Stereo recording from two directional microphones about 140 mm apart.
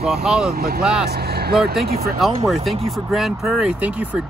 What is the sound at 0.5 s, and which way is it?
Speech, 90° right.